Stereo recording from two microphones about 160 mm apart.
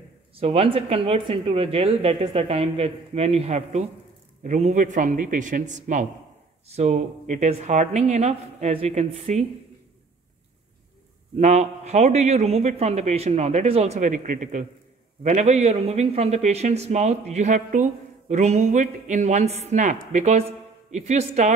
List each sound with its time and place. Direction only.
0.4 s speech: 35° right (ahead or behind)
11.3 s speech: 45° right (ahead or behind)